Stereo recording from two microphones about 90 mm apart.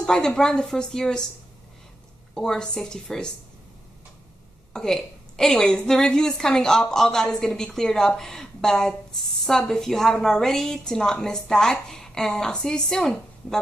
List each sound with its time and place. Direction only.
0.0 s a woman's voice: 10° left (ahead or behind)
2.3 s a woman's voice: 5° left (ahead or behind)
4.7 s a woman's voice: 5° left (ahead or behind)